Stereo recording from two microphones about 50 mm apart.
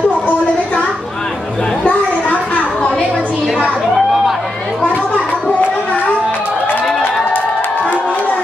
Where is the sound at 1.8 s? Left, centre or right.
Left.